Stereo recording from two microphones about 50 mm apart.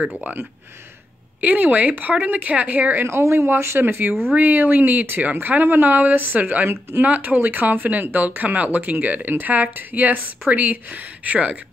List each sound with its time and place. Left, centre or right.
0.2 s speech: right
3.0 s speech: right